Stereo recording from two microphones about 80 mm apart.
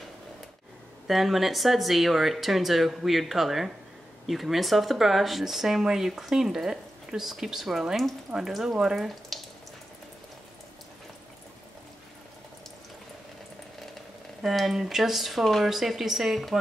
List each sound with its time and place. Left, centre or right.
1.0 s speech: centre
14.4 s speech: centre